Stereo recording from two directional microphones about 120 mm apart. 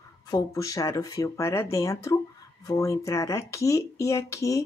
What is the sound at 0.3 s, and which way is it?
Speech, 30° left (ahead or behind).